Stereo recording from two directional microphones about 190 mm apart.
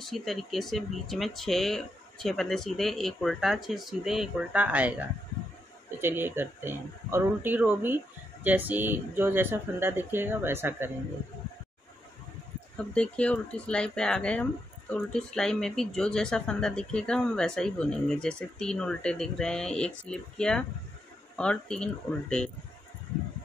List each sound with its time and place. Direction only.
0.0 s speech: centre (ahead or behind)
12.7 s speech: 5° left (ahead or behind)